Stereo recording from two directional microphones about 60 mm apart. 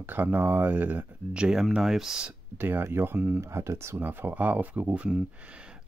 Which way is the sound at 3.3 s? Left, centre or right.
Right.